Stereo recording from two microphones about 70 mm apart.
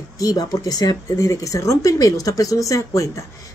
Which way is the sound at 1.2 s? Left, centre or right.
Left.